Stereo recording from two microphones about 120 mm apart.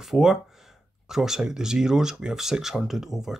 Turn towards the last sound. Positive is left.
turn(degrees=-5)  # may be behind; listen again after turning